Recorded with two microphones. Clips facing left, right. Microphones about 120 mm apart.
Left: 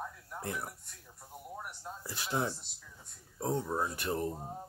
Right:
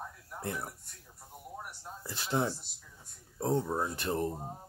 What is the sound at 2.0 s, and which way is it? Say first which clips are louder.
Speech: right 3 dB; 30° right (ahead or behind).